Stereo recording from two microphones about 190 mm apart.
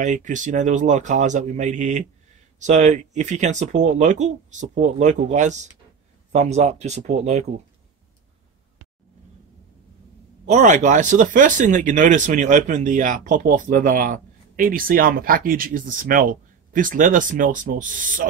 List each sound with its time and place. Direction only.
0.0 s speech: 40° right (ahead or behind)
10.4 s speech: 40° right (ahead or behind)